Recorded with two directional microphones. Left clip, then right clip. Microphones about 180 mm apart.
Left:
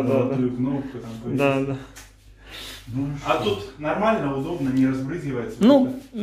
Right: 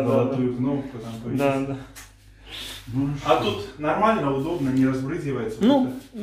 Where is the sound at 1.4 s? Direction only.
15° left (ahead or behind).